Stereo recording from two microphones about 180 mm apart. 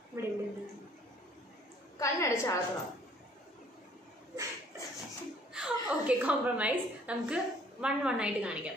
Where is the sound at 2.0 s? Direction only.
15° left (ahead or behind).